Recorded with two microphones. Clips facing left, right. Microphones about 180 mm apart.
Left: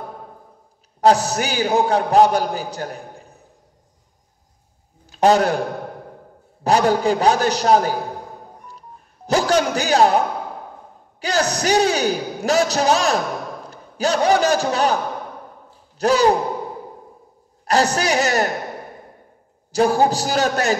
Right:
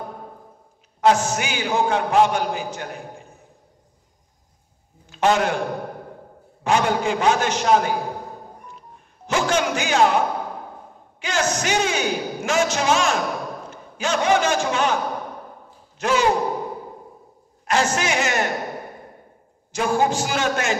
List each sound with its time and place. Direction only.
1.0 s a man's voice: 35° left (ahead or behind)
5.0 s a man's voice: 35° left (ahead or behind)
6.6 s a man's voice: 35° left (ahead or behind)
8.6 s a sound: 35° left (ahead or behind)
11.1 s a man's voice: 35° left (ahead or behind)
16.0 s a man's voice: 35° left (ahead or behind)
17.6 s a woman's voice: 35° left (ahead or behind)
19.7 s a man's voice: 35° left (ahead or behind)